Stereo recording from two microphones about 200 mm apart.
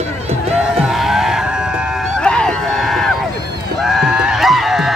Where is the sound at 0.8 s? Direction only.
Centre (ahead or behind).